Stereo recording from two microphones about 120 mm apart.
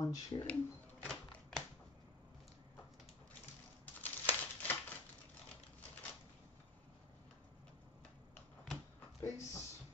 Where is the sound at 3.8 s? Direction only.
15° left (ahead or behind).